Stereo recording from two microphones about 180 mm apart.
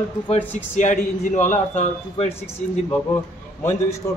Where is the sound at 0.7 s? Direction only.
40° left (ahead or behind).